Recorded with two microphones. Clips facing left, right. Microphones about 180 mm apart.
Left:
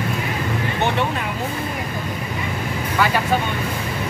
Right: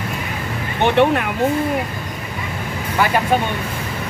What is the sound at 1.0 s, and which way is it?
Speech, 65° right (ahead or behind).